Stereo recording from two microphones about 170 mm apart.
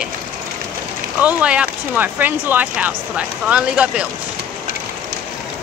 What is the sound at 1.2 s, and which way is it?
Speech, 5° right (ahead or behind).